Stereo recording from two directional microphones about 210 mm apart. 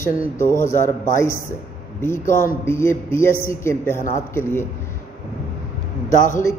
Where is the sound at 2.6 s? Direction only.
10° left (ahead or behind).